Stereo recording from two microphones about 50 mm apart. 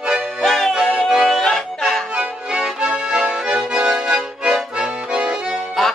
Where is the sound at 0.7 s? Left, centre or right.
Centre.